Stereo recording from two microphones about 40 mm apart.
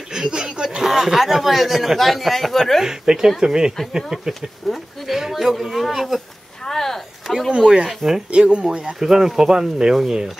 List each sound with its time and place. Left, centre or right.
0.1 s speech: centre
2.8 s speech: centre
4.3 s speech: centre
6.6 s chop: centre
7.2 s speech: centre
7.5 s speech: centre
8.3 s speech: right
8.6 s speech: centre